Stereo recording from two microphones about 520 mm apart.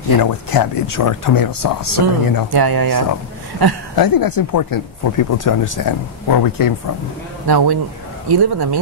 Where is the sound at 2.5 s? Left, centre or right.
Right.